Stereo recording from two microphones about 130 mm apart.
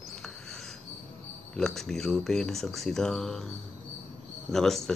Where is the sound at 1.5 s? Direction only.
5° left (ahead or behind).